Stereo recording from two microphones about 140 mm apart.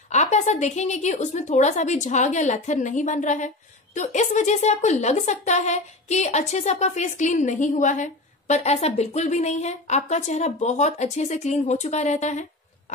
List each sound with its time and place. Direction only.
0.1 s a woman's voice: 55° left (ahead or behind)